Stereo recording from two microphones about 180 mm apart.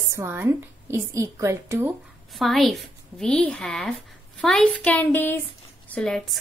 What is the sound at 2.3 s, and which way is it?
A woman's voice, centre (ahead or behind).